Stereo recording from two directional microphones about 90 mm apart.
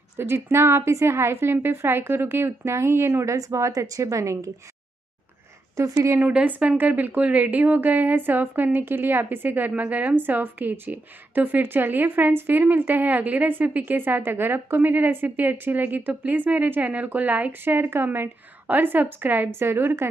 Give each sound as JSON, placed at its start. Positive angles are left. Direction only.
{"t": 0.2, "sound": "a woman's voice", "side_deg": -30}
{"t": 5.8, "sound": "a woman's voice", "side_deg": -35}
{"t": 6.1, "sound": "a woman's voice", "side_deg": -15}